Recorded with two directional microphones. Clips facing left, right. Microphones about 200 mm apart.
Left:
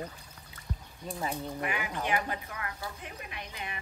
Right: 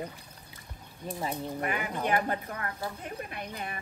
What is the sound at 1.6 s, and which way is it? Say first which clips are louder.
Speech: right 2 dB; 45° right (ahead or behind).